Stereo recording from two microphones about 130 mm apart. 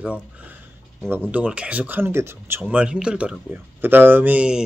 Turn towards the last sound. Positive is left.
turn(degrees=-10)  # may be behind; listen again after turning